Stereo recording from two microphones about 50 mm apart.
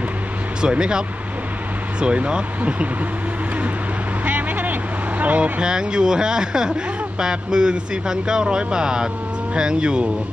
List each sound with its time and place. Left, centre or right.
0.6 s speech: centre
4.2 s vehicle: right
5.2 s speech: right
5.6 s speech: centre